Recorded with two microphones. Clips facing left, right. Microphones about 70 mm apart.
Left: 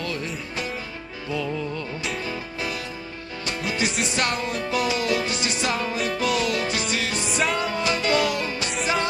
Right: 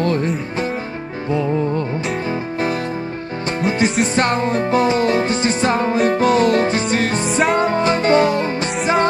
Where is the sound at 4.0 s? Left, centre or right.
Right.